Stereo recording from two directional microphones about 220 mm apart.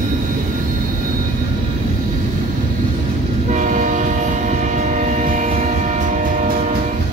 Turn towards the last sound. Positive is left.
turn(degrees=-35)  # may be behind; listen again after turning